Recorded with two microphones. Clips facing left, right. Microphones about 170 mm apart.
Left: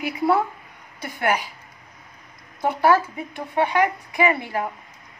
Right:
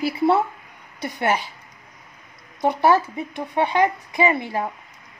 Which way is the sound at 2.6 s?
20° right (ahead or behind).